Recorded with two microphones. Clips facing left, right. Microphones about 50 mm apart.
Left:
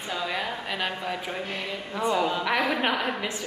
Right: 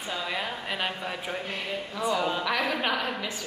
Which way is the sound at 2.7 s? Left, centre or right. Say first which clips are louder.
Left 2 dB; centre.